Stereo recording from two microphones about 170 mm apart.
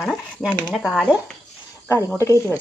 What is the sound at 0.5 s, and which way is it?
Speech, 5° left (ahead or behind).